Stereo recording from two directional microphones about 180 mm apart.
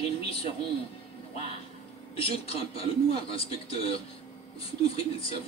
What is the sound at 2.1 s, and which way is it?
A man's voice, 30° left (ahead or behind).